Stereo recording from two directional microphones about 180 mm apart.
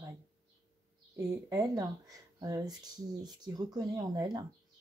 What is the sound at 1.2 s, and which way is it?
Speech, 20° right (ahead or behind).